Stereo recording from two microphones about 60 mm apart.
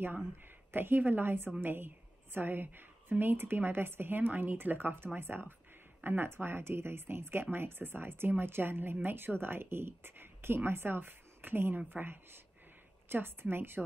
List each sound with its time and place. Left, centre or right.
0.7 s a woman's voice: right